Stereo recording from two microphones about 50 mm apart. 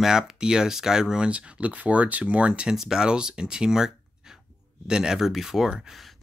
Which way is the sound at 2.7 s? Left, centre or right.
Centre.